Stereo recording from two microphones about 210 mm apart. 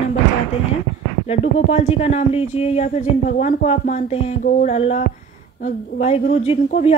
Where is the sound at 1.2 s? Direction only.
30° left (ahead or behind).